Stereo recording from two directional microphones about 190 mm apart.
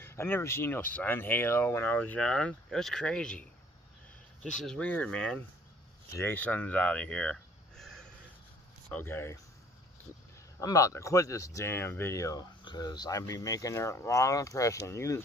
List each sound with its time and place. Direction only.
0.0 s speech: 10° left (ahead or behind)
10.6 s speech: 15° left (ahead or behind)